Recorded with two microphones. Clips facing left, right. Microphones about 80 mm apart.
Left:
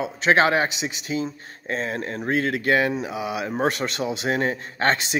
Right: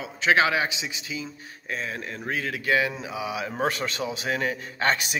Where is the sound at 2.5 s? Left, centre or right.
Left.